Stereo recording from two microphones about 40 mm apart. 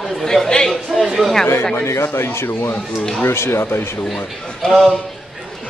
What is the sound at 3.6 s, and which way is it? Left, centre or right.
Speech, left.